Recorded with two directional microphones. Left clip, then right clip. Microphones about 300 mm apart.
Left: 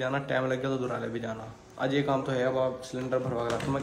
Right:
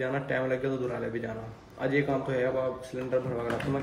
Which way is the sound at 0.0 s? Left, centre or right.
Centre.